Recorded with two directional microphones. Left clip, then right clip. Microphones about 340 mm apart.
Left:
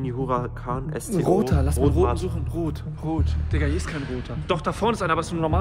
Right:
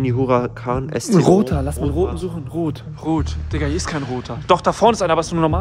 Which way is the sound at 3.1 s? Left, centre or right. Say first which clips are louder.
Right 8 dB; right.